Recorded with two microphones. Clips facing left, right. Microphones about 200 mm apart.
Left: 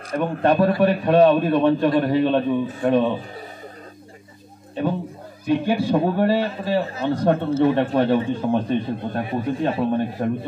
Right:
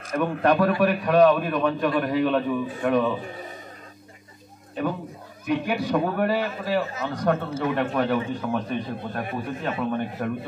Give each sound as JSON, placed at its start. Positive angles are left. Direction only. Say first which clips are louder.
{"t": 0.1, "sound": "a man's voice", "louder": "left 2 dB", "side_deg": 30}
{"t": 4.8, "sound": "a man's voice", "louder": "left 4 dB", "side_deg": 30}